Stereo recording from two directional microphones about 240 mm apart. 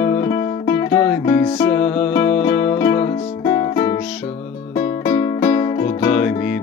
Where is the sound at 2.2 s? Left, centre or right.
Left.